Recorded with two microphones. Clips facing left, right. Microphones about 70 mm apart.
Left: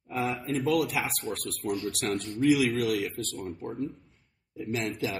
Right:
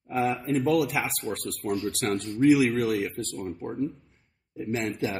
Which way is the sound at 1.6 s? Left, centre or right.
Centre.